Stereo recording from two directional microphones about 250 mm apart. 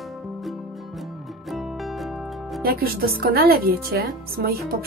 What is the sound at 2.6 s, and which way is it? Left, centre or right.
A woman's voice, right.